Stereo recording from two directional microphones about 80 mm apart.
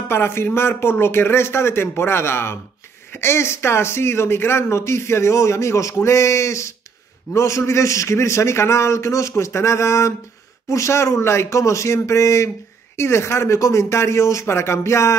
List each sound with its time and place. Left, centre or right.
0.1 s speech: left